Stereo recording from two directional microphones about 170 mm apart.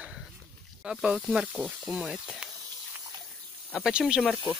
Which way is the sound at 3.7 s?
5° right (ahead or behind).